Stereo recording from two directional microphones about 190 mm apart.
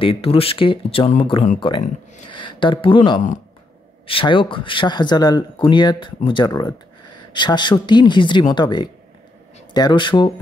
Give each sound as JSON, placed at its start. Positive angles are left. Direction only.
{"t": 0.0, "sound": "speech", "side_deg": 30}